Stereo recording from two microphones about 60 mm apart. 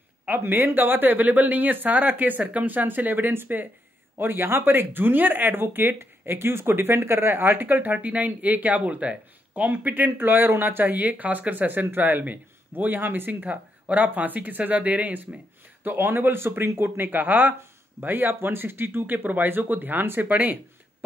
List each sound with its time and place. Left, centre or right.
0.2 s speech: right